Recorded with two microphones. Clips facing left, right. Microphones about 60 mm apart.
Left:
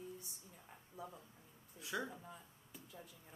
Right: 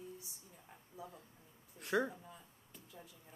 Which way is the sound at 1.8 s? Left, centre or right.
Right.